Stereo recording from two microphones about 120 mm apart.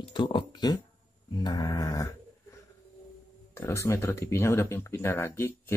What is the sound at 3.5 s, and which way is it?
Speech, 25° left (ahead or behind).